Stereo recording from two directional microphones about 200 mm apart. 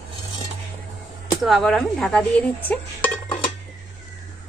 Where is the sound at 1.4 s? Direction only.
Centre (ahead or behind).